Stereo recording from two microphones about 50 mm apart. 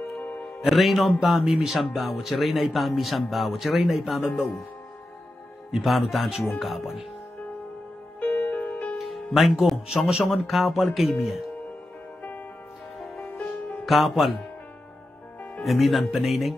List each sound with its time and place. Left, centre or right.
0.2 s music: left
0.6 s speech: centre
5.7 s speech: centre
8.5 s music: left
8.9 s speech: centre
13.0 s music: centre
13.4 s music: centre
13.8 s speech: centre
15.6 s speech: centre